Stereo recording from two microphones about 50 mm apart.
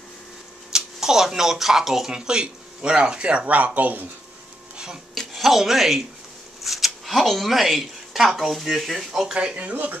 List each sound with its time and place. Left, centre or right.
0.7 s speech: centre
2.1 s speech: centre; by 4.1 s right
5.1 s speech: centre
9.3 s speech: right